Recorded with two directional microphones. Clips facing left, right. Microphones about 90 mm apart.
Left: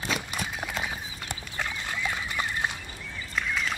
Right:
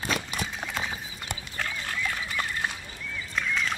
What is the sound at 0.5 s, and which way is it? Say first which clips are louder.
Horse: left 1 dB; 10° left (ahead or behind).